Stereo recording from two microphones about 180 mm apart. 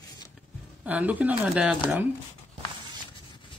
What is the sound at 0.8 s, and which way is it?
Speech, 10° right (ahead or behind).